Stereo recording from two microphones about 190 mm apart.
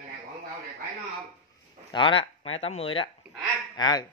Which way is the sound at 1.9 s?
25° left (ahead or behind).